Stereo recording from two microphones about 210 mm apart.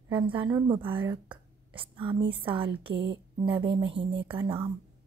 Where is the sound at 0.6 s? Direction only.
10° right (ahead or behind).